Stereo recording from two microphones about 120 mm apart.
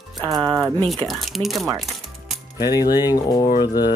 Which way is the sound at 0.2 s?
40° right (ahead or behind).